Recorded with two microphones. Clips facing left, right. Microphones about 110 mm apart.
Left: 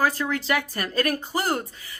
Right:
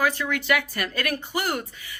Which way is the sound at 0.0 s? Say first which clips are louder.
Left 1 dB; 35° left (ahead or behind).